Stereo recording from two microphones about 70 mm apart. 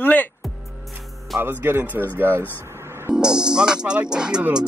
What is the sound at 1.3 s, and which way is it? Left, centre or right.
Speech, right.